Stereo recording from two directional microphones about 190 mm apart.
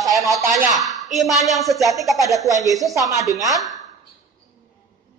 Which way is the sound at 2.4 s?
15° right (ahead or behind).